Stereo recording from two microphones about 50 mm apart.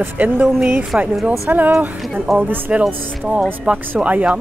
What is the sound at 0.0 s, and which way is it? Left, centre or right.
Speech, right.